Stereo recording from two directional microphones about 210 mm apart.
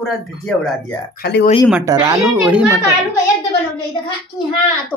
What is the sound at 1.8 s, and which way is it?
A child's voice, 15° right (ahead or behind).